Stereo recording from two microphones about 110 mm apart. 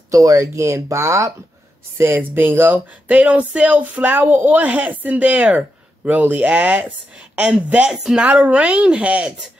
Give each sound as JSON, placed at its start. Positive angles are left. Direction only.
{"t": 0.1, "sound": "speech", "side_deg": -30}